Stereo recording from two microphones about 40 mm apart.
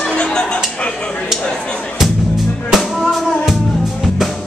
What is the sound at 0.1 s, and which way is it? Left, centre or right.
Music, left.